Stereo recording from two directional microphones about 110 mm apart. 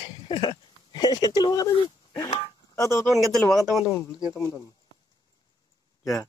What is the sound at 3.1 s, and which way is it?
Speech, centre (ahead or behind).